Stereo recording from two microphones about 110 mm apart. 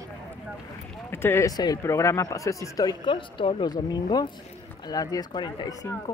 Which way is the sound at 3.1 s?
50° left (ahead or behind).